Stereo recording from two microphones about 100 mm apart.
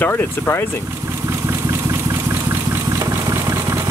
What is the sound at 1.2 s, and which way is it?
Vehicle, 30° right (ahead or behind).